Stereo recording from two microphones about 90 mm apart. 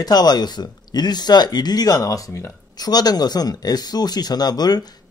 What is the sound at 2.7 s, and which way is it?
Speech, 50° left (ahead or behind).